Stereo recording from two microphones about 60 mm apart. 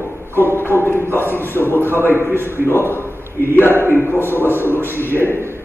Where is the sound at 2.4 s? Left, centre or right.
Left.